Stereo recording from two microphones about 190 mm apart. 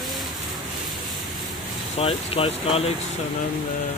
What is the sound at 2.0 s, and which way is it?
Speech, 30° left (ahead or behind).